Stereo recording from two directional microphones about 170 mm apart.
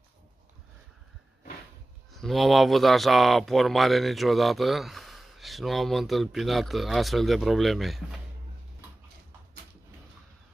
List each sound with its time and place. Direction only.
2.1 s speech: centre (ahead or behind)